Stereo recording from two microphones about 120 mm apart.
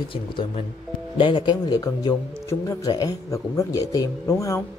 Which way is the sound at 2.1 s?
20° left (ahead or behind).